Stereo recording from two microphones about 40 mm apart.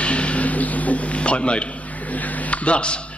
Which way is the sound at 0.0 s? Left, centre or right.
Left.